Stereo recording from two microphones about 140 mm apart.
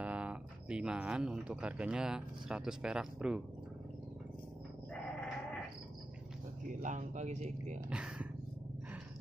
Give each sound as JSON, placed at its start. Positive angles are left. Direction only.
{"t": 0.0, "sound": "speech", "side_deg": -10}
{"t": 6.7, "sound": "speech", "side_deg": -65}
{"t": 7.9, "sound": "speech", "side_deg": -10}